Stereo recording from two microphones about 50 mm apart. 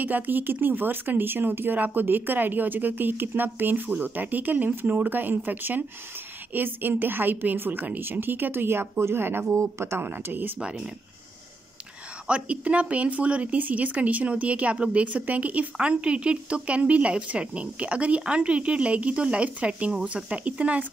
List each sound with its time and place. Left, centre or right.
0.0 s a woman's voice: right
9.6 s speech: right
9.9 s a woman's voice: right
12.3 s a woman's voice: right